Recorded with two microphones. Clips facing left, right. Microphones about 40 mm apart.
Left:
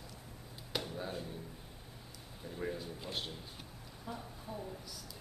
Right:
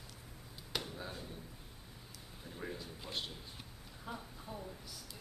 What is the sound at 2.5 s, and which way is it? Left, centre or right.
Speech, centre.